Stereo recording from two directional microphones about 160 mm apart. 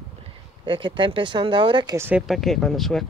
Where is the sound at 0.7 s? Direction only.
30° right (ahead or behind).